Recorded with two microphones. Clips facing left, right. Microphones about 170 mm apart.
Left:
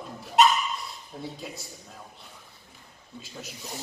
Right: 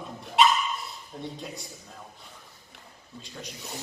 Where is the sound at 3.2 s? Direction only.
5° left (ahead or behind).